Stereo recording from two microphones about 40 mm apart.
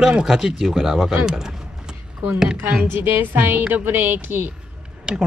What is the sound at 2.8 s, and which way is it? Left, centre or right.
Speech, right.